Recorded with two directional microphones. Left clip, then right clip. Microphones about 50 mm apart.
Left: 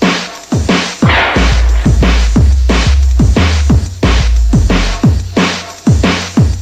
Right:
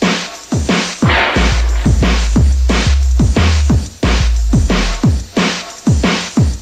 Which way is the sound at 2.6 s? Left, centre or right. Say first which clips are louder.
Left 2 dB; centre.